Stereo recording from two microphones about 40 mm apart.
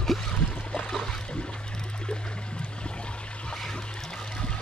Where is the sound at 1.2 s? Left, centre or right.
Left.